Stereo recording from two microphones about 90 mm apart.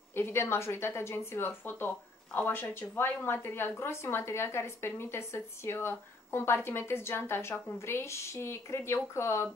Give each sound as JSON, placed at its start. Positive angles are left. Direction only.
{"t": 0.1, "sound": "a woman's voice", "side_deg": 30}